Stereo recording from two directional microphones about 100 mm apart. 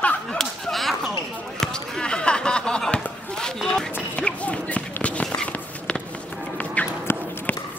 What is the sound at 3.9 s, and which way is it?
Run, 10° left (ahead or behind).